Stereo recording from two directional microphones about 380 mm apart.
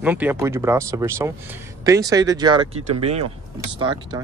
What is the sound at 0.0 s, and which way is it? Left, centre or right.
Speech, centre.